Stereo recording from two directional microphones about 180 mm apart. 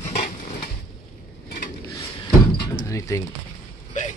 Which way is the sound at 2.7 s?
15° left (ahead or behind).